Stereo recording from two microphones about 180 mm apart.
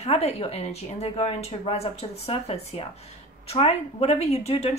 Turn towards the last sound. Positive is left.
turn(degrees=35)  # may be behind; listen again after turning